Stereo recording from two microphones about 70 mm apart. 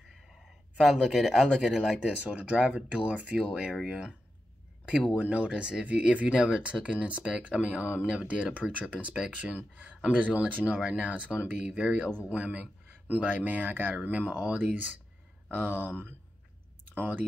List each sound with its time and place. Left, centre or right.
0.7 s speech: centre
2.0 s speech: centre
5.1 s speech: centre